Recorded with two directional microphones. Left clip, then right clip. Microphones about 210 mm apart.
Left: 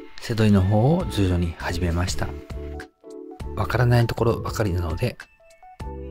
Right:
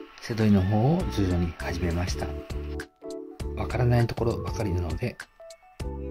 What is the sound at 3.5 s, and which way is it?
Speech, 20° left (ahead or behind).